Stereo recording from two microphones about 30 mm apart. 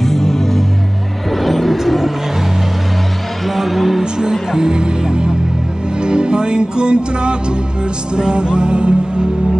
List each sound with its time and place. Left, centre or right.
0.0 s music: centre
1.3 s vehicle: centre
3.4 s a sound: centre
4.0 s music: right